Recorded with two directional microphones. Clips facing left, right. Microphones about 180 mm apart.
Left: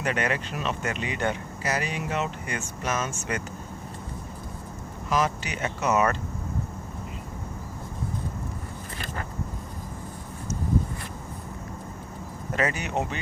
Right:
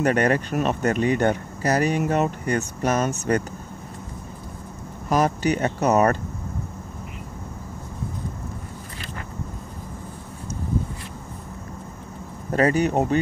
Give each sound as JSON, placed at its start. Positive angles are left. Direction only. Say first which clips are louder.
{"t": 0.0, "sound": "speech", "louder": "right 8 dB", "side_deg": -40}
{"t": 5.1, "sound": "speech", "louder": "right 6 dB", "side_deg": -40}
{"t": 12.4, "sound": "speech", "louder": "right 9 dB", "side_deg": -35}